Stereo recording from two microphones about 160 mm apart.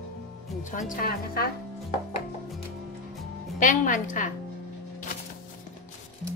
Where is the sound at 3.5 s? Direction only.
55° left (ahead or behind).